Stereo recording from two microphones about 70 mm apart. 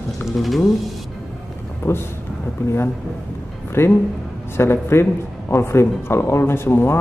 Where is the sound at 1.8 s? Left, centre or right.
Left.